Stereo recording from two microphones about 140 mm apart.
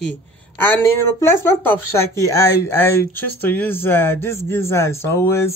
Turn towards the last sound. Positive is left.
turn(degrees=20)  # may be behind; listen again after turning